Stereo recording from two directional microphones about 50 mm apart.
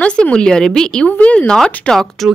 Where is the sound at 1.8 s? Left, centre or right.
Centre.